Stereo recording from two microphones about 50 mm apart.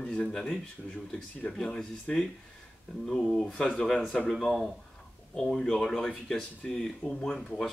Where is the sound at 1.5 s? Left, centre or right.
Centre.